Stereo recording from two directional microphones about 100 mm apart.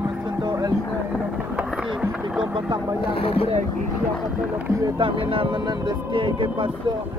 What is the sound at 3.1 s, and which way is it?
Speech, 70° left (ahead or behind).